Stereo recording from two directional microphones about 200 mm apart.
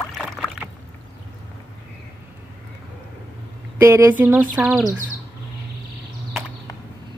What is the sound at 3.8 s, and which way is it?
Speech, 15° right (ahead or behind).